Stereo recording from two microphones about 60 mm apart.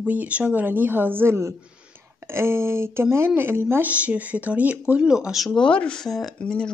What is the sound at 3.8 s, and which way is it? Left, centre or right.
Speech, right.